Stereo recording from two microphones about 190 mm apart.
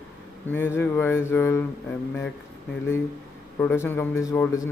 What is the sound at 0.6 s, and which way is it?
Speech, 10° left (ahead or behind).